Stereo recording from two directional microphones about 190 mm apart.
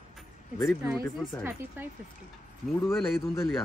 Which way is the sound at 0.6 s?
Centre (ahead or behind).